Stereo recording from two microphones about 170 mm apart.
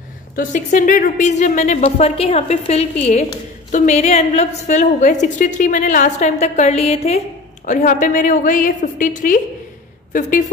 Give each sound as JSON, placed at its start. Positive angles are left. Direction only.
{"t": 0.4, "sound": "a woman's voice", "side_deg": 50}
{"t": 7.6, "sound": "a woman's voice", "side_deg": 50}